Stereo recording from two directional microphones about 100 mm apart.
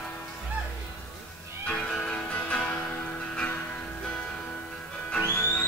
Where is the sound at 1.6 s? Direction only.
10° left (ahead or behind).